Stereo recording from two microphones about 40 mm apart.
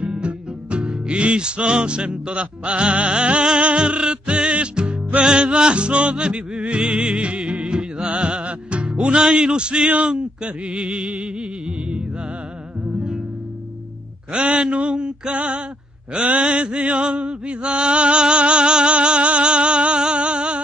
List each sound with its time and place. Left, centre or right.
0.0 s music: right
5.2 s chant: right
7.2 s music: right
9.3 s chant: right
10.0 s a man's voice: right
10.8 s music: centre
14.3 s a sound: right
14.6 s chant: right